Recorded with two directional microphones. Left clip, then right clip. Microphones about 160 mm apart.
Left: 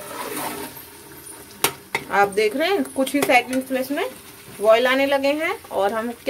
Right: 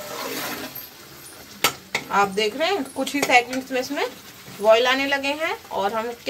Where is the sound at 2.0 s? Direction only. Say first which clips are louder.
Left 2 dB; 35° left (ahead or behind).